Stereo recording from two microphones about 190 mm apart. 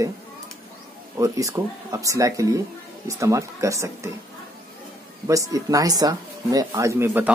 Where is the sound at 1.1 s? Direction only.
15° right (ahead or behind).